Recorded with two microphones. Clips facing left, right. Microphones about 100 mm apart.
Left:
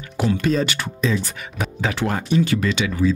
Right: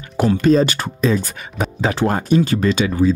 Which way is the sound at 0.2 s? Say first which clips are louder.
Right 6 dB; 45° right (ahead or behind).